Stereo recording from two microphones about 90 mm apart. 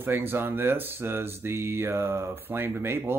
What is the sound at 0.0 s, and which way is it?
Speech, 25° right (ahead or behind).